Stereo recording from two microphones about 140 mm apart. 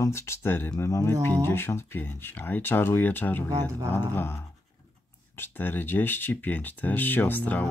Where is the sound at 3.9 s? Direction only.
15° left (ahead or behind).